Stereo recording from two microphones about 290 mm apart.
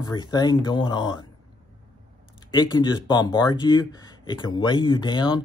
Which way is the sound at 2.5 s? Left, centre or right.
Centre.